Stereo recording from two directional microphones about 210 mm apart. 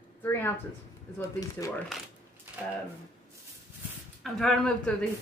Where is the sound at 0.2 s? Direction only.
10° left (ahead or behind).